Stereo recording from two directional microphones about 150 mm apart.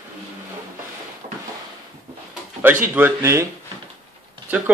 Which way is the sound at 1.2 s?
40° right (ahead or behind).